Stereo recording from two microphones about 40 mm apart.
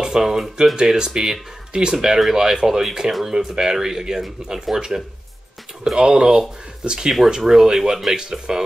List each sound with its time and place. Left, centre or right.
0.0 s a sound: centre
0.7 s speech: centre
3.1 s speech: centre
3.3 s speech: centre